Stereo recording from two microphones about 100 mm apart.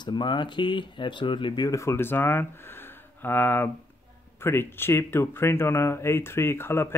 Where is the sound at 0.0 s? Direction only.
50° left (ahead or behind).